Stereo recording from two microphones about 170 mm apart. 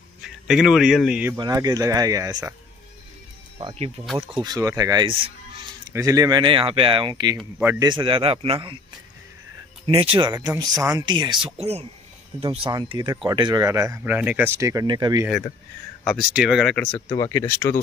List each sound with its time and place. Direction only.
0.2 s a man's voice: centre (ahead or behind)
1.3 s speech: 20° right (ahead or behind)
3.5 s speech: 35° right (ahead or behind)
4.0 s speech: centre (ahead or behind)
4.4 s speech: 20° right (ahead or behind)
5.9 s speech: 20° right (ahead or behind)
9.8 s speech: 35° right (ahead or behind)
10.3 s speech: 20° right (ahead or behind)
11.6 s speech: 40° right (ahead or behind)
16.0 s speech: centre (ahead or behind)
17.1 s speech: 20° left (ahead or behind)